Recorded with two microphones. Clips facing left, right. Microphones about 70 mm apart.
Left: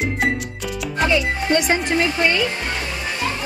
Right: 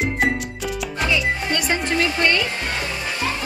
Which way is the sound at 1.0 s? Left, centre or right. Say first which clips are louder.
Left 3 dB; left.